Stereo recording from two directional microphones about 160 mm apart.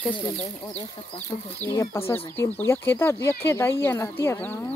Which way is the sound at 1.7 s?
15° left (ahead or behind).